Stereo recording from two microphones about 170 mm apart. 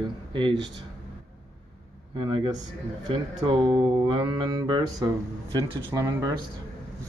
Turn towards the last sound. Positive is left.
turn(degrees=-20)  # may be behind; listen again after turning